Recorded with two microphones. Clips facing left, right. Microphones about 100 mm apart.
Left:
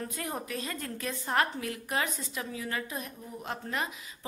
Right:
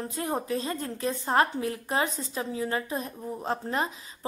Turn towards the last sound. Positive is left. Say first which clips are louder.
# right 6 dB
turn(degrees=-35)  # may be behind; listen again after turning